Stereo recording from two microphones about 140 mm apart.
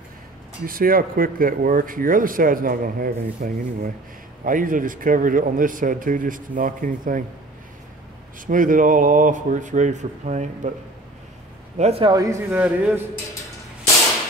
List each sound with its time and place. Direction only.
0.7 s speech: 90° right
4.5 s speech: 75° right (ahead or behind)
8.5 s speech: 70° right (ahead or behind)
11.8 s a man's voice: 45° right (ahead or behind)
12.1 s a man's voice: 20° right (ahead or behind)